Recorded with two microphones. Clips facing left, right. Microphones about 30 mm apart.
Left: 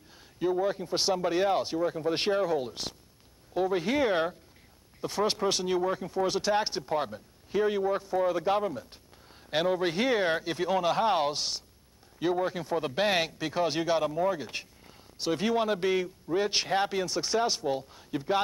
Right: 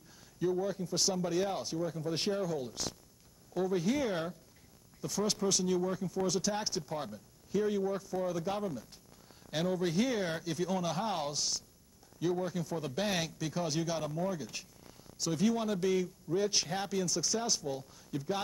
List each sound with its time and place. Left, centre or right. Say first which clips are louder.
0.4 s speech: left 5 dB; left